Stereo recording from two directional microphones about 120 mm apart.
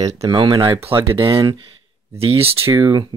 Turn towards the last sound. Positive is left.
turn(degrees=-40)  # may be behind; listen again after turning